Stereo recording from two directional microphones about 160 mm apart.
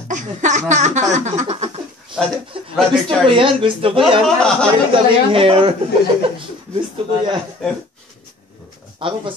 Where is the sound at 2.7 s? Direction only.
Centre (ahead or behind).